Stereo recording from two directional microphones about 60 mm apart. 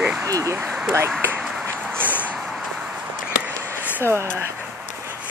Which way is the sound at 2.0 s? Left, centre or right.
Right.